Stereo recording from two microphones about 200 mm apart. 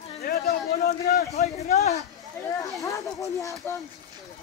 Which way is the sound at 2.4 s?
15° left (ahead or behind).